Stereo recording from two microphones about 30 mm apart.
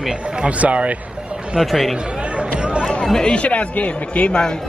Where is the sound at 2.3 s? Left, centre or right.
Right.